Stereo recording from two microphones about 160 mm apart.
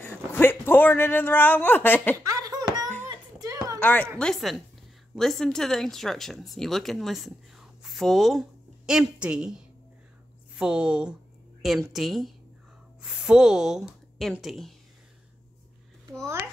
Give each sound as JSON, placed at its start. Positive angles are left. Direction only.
{"t": 0.0, "sound": "a man's voice", "side_deg": 15}
{"t": 2.2, "sound": "a sound", "side_deg": -20}
{"t": 3.8, "sound": "a woman's voice", "side_deg": 10}